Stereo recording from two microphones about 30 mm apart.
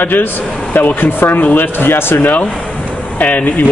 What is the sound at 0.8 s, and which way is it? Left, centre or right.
Speech, left.